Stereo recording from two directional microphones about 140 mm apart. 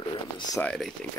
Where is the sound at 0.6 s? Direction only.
5° left (ahead or behind).